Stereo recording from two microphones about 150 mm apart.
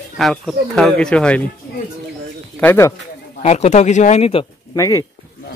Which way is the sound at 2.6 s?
15° left (ahead or behind).